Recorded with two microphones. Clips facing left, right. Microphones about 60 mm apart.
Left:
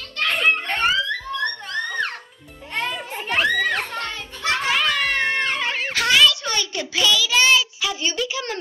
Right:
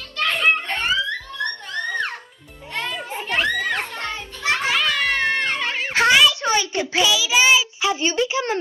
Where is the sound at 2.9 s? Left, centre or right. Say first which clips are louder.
Even; centre.